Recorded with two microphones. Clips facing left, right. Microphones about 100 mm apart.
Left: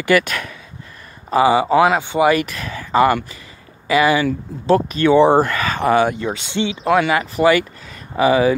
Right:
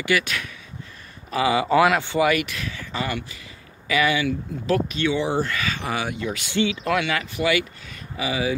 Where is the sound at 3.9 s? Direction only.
35° left (ahead or behind).